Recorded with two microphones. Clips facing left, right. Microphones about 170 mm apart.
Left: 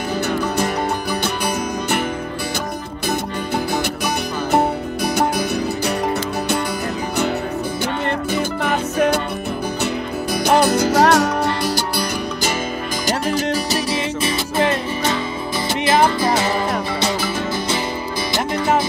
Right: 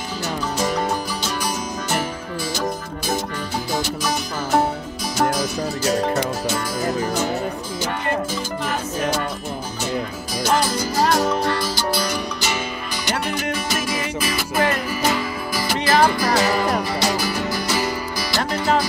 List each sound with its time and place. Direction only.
5.1 s music: 60° left (ahead or behind)
8.4 s music: 65° left (ahead or behind)
10.4 s music: 60° left (ahead or behind)
13.0 s music: 35° left (ahead or behind); by 18.9 s 20° left (ahead or behind)